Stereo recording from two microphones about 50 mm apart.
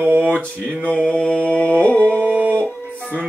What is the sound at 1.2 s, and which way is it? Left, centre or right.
Mantra, left.